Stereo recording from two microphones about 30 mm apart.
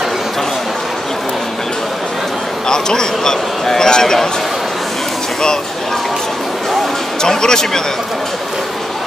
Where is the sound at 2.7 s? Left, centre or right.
Left.